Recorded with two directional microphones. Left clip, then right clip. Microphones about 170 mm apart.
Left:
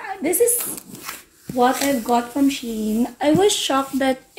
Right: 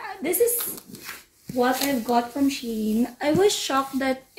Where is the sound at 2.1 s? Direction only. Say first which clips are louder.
Left 2 dB; 5° left (ahead or behind).